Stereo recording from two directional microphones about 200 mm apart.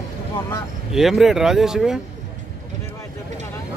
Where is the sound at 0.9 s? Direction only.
Centre (ahead or behind).